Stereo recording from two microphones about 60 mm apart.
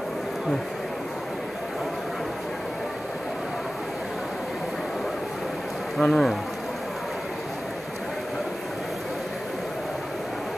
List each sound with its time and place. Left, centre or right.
5.9 s speech: centre